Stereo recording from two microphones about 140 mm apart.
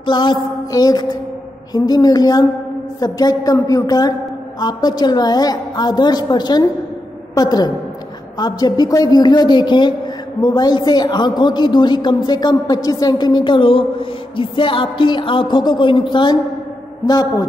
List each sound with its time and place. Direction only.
0.0 s a man's voice: 35° left (ahead or behind)